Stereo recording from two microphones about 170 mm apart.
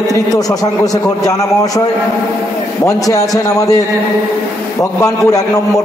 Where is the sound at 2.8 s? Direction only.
20° left (ahead or behind).